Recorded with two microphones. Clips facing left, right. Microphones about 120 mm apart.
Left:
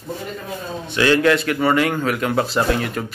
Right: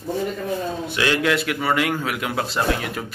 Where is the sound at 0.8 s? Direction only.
5° right (ahead or behind).